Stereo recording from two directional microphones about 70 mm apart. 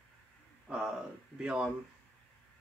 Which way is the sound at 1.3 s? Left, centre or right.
Centre.